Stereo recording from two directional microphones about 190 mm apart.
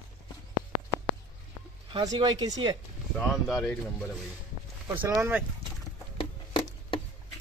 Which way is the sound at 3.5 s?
15° left (ahead or behind).